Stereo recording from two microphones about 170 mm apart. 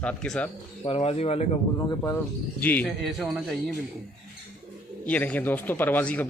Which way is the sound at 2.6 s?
10° left (ahead or behind).